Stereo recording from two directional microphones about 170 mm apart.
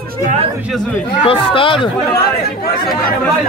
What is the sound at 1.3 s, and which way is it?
Speech, 30° left (ahead or behind).